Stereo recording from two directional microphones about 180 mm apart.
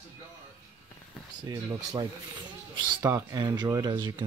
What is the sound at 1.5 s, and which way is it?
Speech, 25° right (ahead or behind).